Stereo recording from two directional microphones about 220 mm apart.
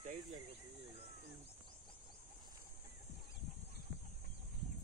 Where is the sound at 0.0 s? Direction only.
35° right (ahead or behind).